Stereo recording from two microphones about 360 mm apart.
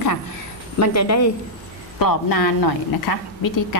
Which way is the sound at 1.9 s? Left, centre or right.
Left.